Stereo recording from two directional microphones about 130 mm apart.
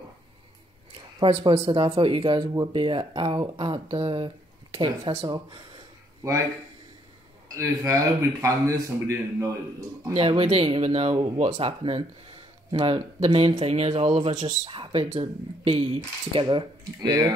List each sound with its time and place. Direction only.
1.2 s speech: 40° right (ahead or behind)
7.4 s speech: 25° right (ahead or behind)
10.1 s speech: 45° right (ahead or behind)
14.6 s speech: 40° right (ahead or behind)